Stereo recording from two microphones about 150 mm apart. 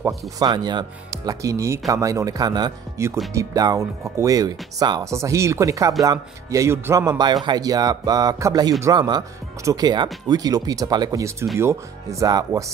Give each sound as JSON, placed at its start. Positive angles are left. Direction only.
{"t": 0.4, "sound": "speech", "side_deg": -25}